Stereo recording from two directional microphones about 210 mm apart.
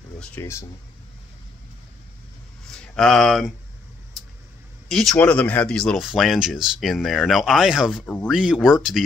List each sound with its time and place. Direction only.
0.2 s speech: 10° left (ahead or behind)
2.7 s speech: 5° left (ahead or behind)
4.8 s speech: centre (ahead or behind)